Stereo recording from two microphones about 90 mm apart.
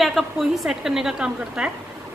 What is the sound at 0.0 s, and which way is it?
A woman's voice, centre (ahead or behind).